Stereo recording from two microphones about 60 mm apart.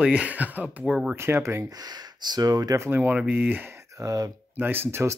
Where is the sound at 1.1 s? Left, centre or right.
Right.